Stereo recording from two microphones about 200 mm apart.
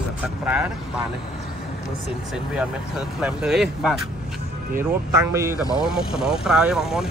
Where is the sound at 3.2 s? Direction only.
5° right (ahead or behind).